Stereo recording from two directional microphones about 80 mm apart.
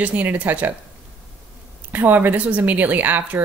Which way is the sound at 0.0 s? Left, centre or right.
Right.